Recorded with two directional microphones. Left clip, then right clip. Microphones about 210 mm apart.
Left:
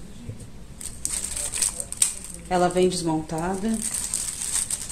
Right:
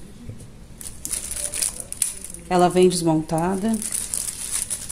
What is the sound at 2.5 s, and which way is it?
A woman's voice, 45° right (ahead or behind).